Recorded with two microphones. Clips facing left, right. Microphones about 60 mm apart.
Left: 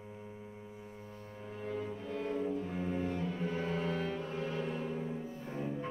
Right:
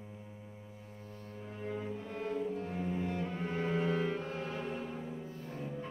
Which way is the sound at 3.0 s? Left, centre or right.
Centre.